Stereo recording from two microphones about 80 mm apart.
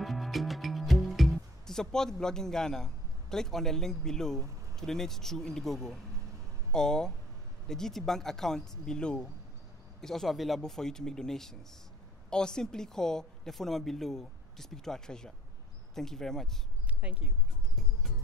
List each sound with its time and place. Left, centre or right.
0.0 s a woman's voice: centre
17.0 s speech: centre